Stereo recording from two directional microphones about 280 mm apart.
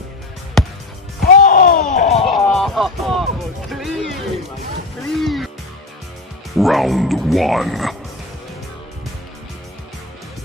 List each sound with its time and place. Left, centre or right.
0.6 s music: centre
1.2 s a sound: left
2.2 s music: centre
5.2 s music: centre
6.5 s speech: centre